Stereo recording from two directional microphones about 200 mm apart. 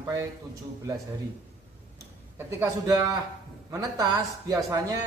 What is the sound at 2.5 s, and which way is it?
A man's voice, 15° right (ahead or behind).